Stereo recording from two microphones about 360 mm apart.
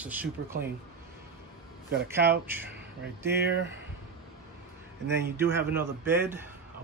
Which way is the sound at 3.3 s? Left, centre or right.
Right.